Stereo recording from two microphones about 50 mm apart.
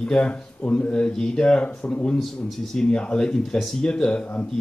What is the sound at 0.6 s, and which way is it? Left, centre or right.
Speech, left.